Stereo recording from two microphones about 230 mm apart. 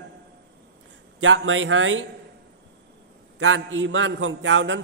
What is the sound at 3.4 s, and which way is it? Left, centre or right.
A man's voice, right.